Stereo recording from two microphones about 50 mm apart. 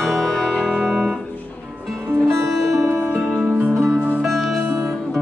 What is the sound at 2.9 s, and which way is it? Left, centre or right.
Music, right.